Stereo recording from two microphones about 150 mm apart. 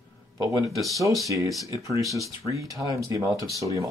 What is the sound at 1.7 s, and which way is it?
Speech, 20° right (ahead or behind).